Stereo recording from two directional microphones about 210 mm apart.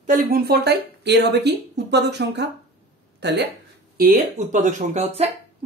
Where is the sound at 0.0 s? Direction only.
35° right (ahead or behind).